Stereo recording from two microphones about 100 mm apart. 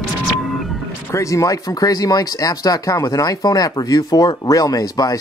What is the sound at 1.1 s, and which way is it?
Speech, 30° left (ahead or behind).